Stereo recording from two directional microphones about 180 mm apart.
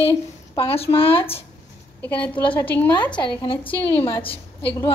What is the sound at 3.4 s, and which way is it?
Speech, 25° left (ahead or behind).